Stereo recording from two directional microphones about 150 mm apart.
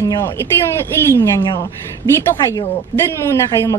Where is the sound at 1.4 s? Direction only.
30° left (ahead or behind).